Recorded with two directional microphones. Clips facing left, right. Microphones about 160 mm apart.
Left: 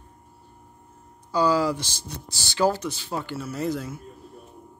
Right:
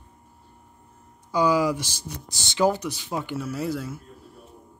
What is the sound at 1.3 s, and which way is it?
Speech, 15° right (ahead or behind).